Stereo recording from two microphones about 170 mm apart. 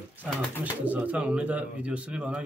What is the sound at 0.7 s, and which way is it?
Speech, 10° right (ahead or behind).